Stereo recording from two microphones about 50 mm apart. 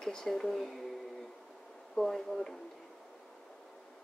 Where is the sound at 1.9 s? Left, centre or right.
Centre.